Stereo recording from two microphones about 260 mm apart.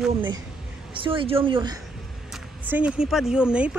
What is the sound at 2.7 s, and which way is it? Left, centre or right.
Speech, centre.